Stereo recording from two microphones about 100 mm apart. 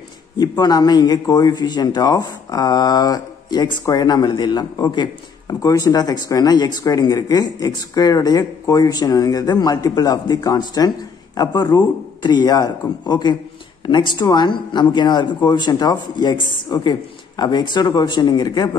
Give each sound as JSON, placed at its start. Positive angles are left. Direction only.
{"t": 0.4, "sound": "a man's voice", "side_deg": 45}